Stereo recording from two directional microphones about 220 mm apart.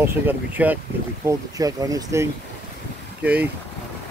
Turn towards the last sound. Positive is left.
turn(degrees=-5)  # may be behind; listen again after turning